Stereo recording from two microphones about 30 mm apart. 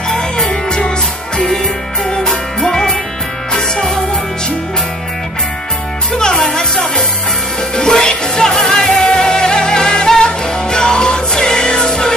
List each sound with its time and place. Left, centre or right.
0.5 s music: left
2.0 s music: centre
6.1 s music: left; by 9.1 s centre
9.1 s music: left